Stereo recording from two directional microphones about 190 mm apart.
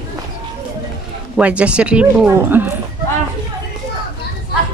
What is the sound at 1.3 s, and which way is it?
Speech, 5° right (ahead or behind).